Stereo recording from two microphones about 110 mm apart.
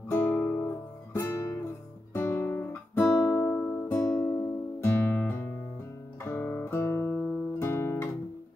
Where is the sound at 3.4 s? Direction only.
20° left (ahead or behind).